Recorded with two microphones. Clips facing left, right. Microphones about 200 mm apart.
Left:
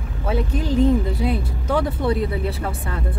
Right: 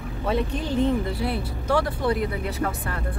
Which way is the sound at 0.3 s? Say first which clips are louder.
Left 3 dB; 10° left (ahead or behind).